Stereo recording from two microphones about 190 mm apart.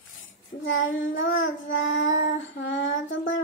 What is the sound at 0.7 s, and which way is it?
Child singing, 90° left.